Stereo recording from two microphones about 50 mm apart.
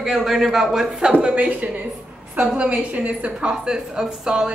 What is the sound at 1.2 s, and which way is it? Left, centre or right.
A woman's voice, right.